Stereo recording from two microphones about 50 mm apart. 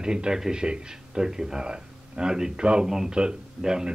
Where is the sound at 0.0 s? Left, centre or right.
Centre.